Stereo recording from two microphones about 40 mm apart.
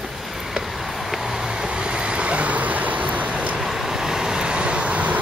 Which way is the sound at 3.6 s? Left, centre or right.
Centre.